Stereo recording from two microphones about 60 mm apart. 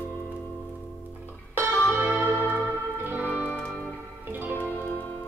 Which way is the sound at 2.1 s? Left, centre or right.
Left.